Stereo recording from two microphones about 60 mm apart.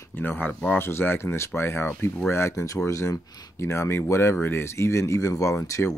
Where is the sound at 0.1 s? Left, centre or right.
Left.